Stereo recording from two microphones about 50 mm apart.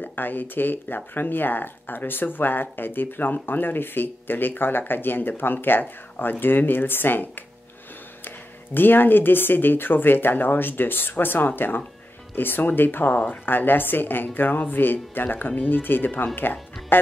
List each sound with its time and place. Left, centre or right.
0.0 s speech: left
8.7 s speech: left